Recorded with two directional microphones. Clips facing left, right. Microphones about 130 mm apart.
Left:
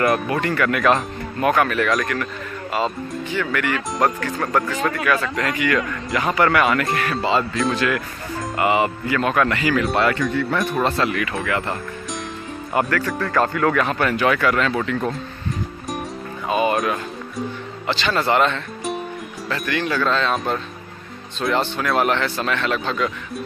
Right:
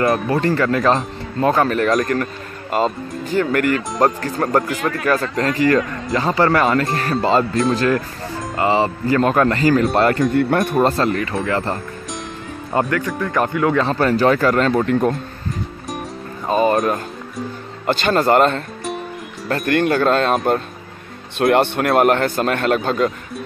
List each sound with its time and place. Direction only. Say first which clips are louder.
0.0 s speech: right 3 dB; 30° right (ahead or behind); by 10.7 s 55° right (ahead or behind)
10.8 s speech: right 4 dB; 40° right (ahead or behind)
12.7 s speech: right 2 dB; 20° right (ahead or behind)
13.8 s speech: right 4 dB; 35° right (ahead or behind)
16.4 s speech: right 4 dB; 35° right (ahead or behind)
21.4 s speech: right 6 dB; 60° right (ahead or behind)